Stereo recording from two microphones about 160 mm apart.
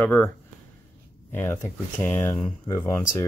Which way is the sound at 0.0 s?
10° left (ahead or behind).